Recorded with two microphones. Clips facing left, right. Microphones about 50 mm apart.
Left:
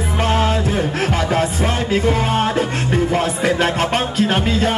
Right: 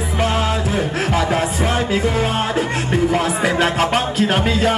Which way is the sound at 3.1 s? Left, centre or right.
Right.